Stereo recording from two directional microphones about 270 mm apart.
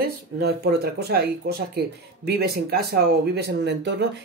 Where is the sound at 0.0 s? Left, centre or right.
Right.